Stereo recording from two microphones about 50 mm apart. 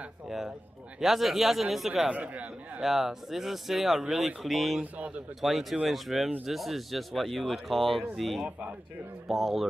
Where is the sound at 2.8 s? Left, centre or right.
Centre.